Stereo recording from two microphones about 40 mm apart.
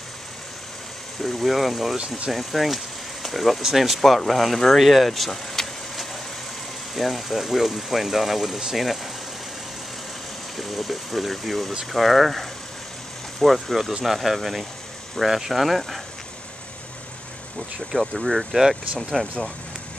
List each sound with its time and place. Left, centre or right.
1.2 s speech: centre
4.7 s vehicle: centre
6.9 s speech: centre
10.6 s speech: centre
17.9 s speech: centre